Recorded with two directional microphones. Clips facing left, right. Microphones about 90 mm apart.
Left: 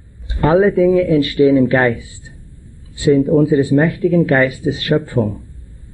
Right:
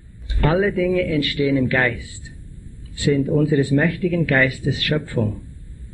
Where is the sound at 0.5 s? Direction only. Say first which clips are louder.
Left 8 dB; 40° left (ahead or behind).